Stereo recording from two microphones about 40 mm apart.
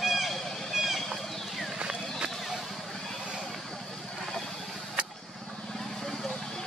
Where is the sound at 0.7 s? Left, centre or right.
Centre.